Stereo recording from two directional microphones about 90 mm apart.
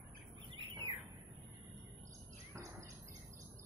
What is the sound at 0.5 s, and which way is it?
Bird, 80° right.